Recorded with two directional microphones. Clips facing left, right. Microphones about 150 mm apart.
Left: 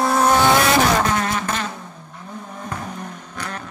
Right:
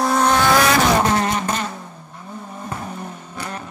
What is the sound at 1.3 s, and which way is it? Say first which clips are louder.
Vehicle: right 1 dB; 10° right (ahead or behind).